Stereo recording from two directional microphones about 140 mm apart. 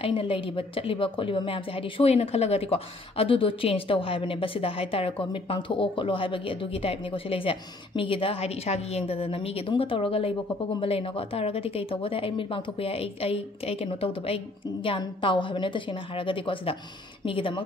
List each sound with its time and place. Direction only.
0.0 s a woman's voice: 40° left (ahead or behind)